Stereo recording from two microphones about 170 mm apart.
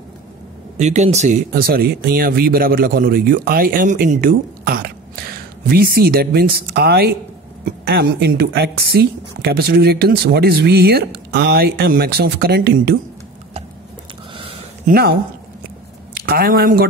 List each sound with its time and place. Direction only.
0.7 s a woman's voice: 40° right (ahead or behind); by 12.9 s 65° right (ahead or behind)
14.3 s a sound: 35° right (ahead or behind)
14.9 s speech: 65° right (ahead or behind)
16.2 s speech: 60° right (ahead or behind)